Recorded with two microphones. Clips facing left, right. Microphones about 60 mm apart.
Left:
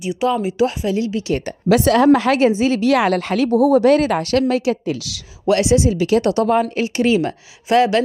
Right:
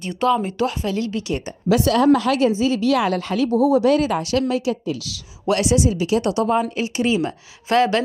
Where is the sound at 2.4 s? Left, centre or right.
Left.